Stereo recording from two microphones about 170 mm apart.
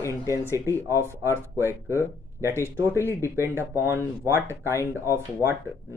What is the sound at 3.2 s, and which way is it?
Speech, 15° right (ahead or behind).